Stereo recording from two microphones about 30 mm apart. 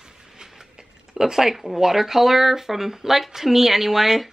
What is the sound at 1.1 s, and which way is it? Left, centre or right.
Speech, centre.